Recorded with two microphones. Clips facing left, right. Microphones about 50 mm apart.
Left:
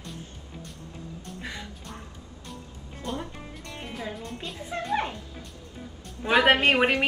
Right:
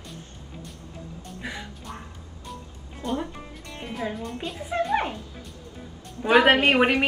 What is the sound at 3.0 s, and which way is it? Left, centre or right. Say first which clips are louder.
Music: right 5 dB; centre.